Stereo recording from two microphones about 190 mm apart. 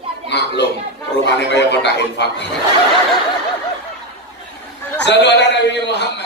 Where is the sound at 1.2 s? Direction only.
65° left (ahead or behind).